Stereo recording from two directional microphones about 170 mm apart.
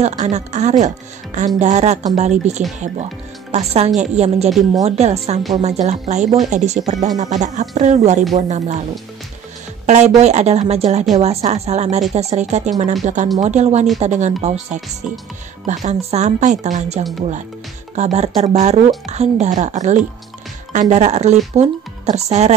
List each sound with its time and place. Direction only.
0.0 s speech: 40° right (ahead or behind)
3.5 s speech: 40° right (ahead or behind)
6.2 s speech: centre (ahead or behind)
6.5 s speech: 40° right (ahead or behind)
9.8 s speech: 40° right (ahead or behind)